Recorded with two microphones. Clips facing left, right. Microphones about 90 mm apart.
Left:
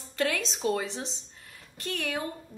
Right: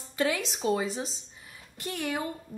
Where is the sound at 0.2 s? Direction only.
10° right (ahead or behind).